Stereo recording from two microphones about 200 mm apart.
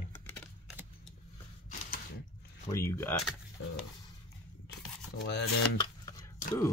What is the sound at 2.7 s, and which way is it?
Speech, 15° left (ahead or behind).